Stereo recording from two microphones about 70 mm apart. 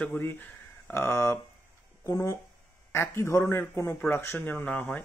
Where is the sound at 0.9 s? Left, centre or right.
Left.